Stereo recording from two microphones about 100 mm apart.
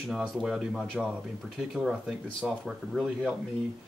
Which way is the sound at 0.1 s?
5° right (ahead or behind).